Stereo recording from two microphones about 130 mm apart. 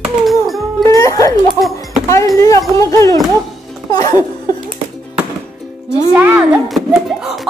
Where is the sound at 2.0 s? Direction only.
25° left (ahead or behind).